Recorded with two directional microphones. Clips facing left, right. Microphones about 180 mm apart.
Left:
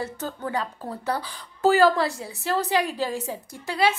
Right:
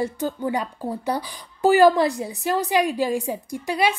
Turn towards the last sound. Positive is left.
turn(degrees=-15)  # may be behind; listen again after turning